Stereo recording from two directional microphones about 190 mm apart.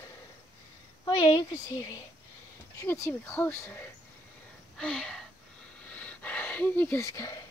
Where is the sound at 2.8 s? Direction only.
15° left (ahead or behind).